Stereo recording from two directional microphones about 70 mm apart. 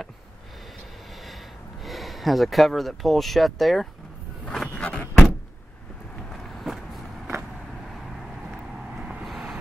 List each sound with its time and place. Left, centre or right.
1.9 s speech: centre
4.7 s door: centre
6.3 s vehicle: centre